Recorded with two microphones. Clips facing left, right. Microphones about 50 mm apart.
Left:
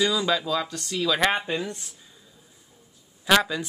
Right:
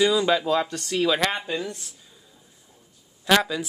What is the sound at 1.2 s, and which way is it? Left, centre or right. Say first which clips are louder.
Speech: left 2 dB; left.